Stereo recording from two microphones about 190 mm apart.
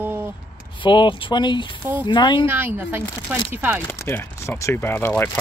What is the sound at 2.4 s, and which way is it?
Speech, 10° right (ahead or behind).